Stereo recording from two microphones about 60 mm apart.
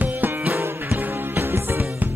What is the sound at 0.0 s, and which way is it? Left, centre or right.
Music, right.